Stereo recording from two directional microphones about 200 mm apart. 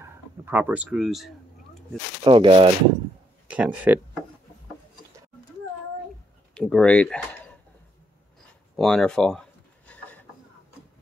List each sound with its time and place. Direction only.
0.0 s speech: 10° right (ahead or behind)
2.2 s speech: 25° right (ahead or behind)
3.4 s speech: 5° right (ahead or behind)
6.5 s speech: 5° left (ahead or behind)
8.7 s a sound: centre (ahead or behind)